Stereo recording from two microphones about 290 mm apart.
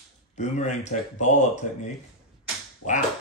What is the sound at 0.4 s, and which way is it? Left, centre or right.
Speech, left.